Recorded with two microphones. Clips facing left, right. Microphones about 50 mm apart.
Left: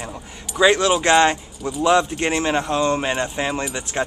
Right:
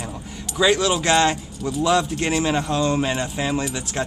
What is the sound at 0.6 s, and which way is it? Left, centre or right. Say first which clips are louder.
Speech: left 3 dB; centre.